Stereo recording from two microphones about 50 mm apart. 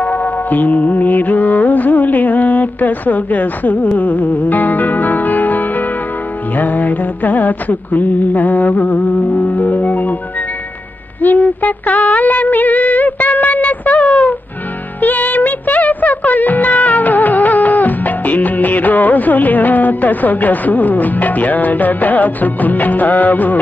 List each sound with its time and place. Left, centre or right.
0.0 s music: left
11.1 s music: left